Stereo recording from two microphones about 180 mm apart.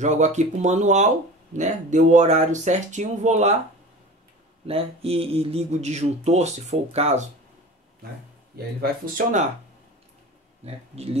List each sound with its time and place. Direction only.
0.0 s speech: 40° right (ahead or behind)
4.6 s speech: 30° right (ahead or behind)
8.6 s speech: 60° right (ahead or behind)
9.0 s speech: 45° right (ahead or behind)
10.6 s speech: 35° right (ahead or behind)